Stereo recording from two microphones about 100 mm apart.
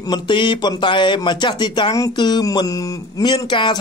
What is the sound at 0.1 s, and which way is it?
Speech, 50° left (ahead or behind).